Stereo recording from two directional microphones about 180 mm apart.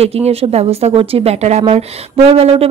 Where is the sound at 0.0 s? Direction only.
35° right (ahead or behind).